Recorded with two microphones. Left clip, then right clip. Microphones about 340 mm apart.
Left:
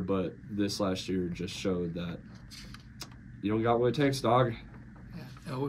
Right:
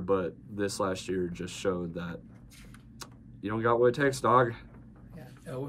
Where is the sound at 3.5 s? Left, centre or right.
Right.